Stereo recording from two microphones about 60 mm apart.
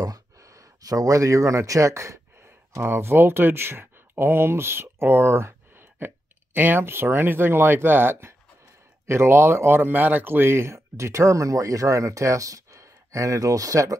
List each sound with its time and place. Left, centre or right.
0.8 s speech: right
2.8 s speech: right